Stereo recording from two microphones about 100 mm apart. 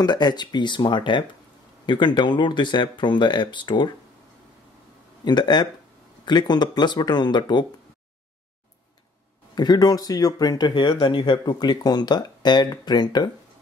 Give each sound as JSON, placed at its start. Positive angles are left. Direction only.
{"t": 0.0, "sound": "speech", "side_deg": 45}
{"t": 5.2, "sound": "speech", "side_deg": 50}
{"t": 9.6, "sound": "speech", "side_deg": 45}